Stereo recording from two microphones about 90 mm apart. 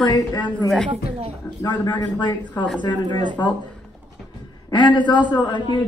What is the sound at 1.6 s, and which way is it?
A man's voice, 50° left (ahead or behind).